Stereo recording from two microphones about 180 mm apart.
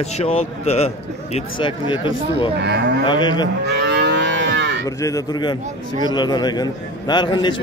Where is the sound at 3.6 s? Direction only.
75° right (ahead or behind).